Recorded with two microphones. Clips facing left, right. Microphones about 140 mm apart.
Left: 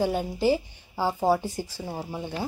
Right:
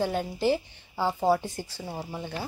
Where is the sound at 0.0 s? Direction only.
10° left (ahead or behind).